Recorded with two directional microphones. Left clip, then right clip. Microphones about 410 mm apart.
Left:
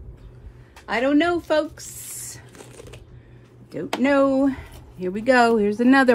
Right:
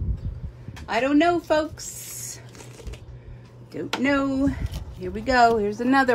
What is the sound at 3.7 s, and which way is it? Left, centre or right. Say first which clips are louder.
Speech: left 3 dB; centre.